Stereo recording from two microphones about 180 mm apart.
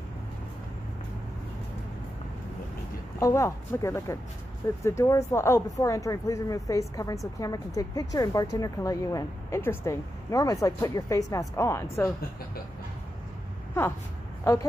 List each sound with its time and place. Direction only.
3.2 s speech: 15° left (ahead or behind)
14.4 s speech: 15° left (ahead or behind)